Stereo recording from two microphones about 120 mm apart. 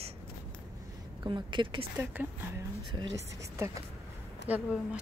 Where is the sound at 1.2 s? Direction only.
40° right (ahead or behind).